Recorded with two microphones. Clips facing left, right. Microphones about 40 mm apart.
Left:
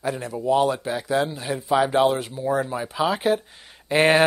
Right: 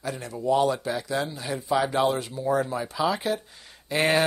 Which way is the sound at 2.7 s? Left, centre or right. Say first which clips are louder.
Left 2 dB; left.